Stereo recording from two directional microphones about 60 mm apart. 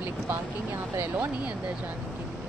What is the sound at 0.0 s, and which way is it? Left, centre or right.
Speech, right.